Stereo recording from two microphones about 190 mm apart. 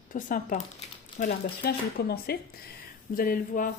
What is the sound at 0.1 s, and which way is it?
A woman's voice, 45° left (ahead or behind).